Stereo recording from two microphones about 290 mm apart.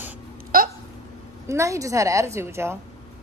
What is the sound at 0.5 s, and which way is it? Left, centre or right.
Hiccup, right.